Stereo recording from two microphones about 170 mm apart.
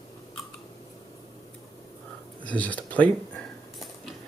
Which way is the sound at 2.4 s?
10° left (ahead or behind).